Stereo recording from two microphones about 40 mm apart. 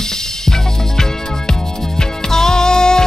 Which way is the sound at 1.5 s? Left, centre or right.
Centre.